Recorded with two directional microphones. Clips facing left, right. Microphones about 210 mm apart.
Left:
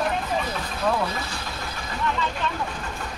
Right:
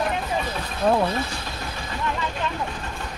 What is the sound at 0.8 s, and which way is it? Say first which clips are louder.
Speech: right 4 dB; 30° right (ahead or behind).